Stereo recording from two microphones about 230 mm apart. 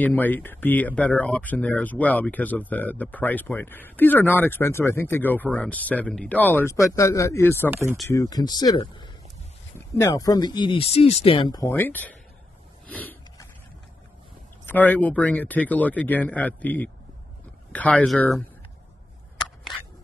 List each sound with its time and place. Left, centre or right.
0.0 s speech: centre
12.8 s a sound: centre
14.7 s speech: centre